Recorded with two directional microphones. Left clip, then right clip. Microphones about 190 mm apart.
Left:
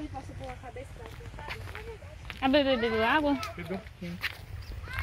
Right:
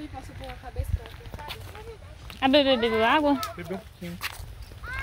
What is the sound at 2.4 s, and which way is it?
Speech, 20° right (ahead or behind).